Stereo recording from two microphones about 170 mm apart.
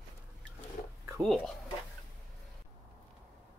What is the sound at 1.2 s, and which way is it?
Speech, centre (ahead or behind).